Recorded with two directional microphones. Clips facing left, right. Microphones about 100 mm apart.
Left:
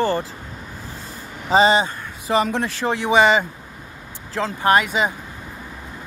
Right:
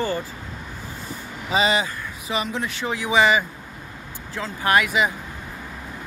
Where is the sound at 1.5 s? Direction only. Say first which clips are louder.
Left 6 dB; 30° left (ahead or behind).